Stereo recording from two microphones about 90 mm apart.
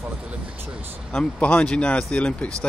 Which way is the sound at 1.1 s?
15° left (ahead or behind).